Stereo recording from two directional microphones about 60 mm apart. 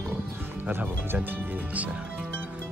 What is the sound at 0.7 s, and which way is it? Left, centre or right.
Speech, right.